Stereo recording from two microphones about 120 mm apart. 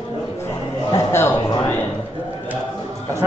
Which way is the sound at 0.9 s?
20° left (ahead or behind).